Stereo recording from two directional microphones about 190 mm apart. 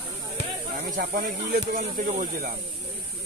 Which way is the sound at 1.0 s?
50° right (ahead or behind).